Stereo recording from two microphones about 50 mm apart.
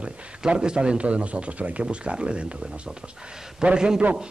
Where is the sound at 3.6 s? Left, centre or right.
Centre.